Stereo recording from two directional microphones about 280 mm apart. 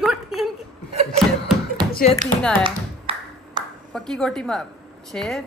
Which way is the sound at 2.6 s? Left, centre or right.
Centre.